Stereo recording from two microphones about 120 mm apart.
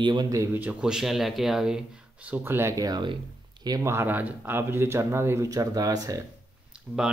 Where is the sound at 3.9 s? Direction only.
20° right (ahead or behind).